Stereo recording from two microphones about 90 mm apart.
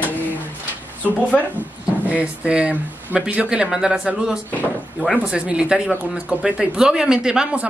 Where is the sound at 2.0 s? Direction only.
15° right (ahead or behind).